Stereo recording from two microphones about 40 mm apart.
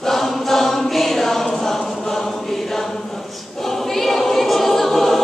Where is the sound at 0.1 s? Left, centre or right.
Centre.